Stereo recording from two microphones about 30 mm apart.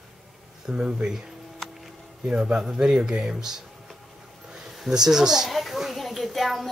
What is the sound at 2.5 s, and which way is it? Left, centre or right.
Speech, centre.